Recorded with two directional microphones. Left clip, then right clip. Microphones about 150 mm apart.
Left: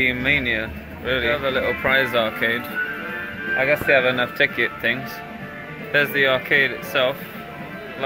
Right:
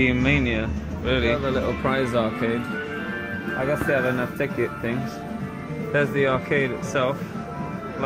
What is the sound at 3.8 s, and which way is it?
Speech, 40° left (ahead or behind).